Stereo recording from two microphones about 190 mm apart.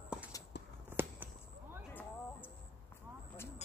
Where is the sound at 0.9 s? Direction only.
10° right (ahead or behind).